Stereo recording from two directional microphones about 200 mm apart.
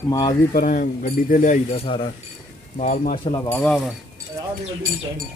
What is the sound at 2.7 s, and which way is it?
Speech, 40° left (ahead or behind).